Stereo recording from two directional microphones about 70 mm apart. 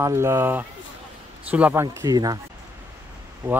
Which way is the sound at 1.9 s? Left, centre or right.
Right.